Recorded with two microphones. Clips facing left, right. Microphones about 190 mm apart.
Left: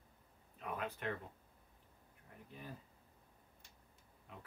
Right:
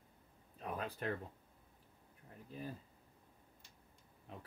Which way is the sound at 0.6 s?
35° right (ahead or behind).